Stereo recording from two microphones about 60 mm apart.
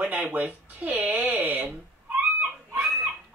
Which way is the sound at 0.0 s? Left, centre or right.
Right.